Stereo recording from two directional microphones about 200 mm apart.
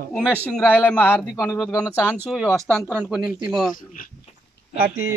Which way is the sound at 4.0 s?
45° left (ahead or behind).